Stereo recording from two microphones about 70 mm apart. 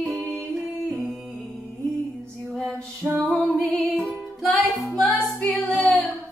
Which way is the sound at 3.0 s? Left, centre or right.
Right.